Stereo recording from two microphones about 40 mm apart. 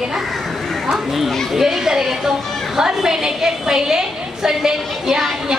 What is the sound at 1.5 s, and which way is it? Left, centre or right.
A woman's voice, centre.